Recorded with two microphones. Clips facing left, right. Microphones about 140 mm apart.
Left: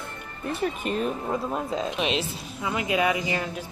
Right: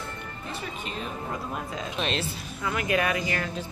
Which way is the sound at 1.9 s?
10° left (ahead or behind).